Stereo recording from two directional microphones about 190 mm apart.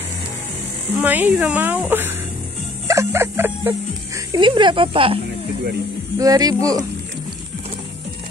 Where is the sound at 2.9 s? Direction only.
15° right (ahead or behind).